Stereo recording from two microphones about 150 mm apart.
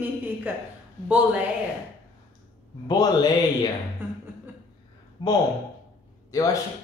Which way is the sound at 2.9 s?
25° left (ahead or behind).